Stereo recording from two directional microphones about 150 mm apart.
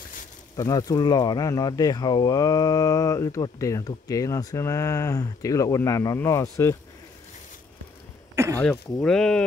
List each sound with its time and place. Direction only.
0.6 s speech: 25° left (ahead or behind)
9.0 s speech: 5° left (ahead or behind)